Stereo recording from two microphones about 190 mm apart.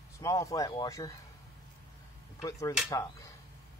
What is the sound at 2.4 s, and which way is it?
Speech, 15° left (ahead or behind).